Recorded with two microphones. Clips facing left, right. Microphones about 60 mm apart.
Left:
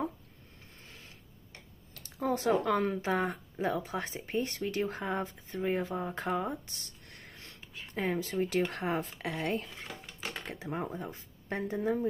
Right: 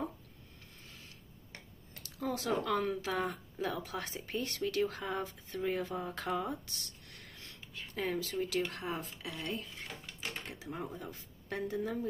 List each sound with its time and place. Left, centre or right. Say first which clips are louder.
2.0 s speech: left 6 dB; left
7.1 s a sound: left 2 dB; left
7.9 s speech: left 3 dB; left